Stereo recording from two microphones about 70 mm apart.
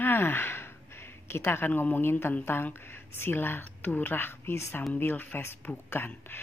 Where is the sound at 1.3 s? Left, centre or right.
Left.